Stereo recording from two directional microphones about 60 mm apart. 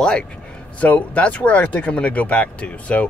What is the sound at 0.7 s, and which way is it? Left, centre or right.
Speech, left.